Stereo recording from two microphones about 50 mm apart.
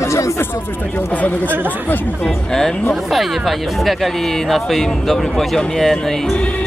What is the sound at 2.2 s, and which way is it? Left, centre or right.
A man's voice, centre.